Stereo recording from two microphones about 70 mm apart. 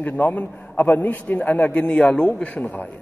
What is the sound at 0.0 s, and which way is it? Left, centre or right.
A man's voice, left.